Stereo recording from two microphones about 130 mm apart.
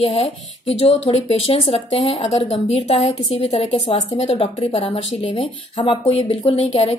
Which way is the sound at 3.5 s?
45° left (ahead or behind).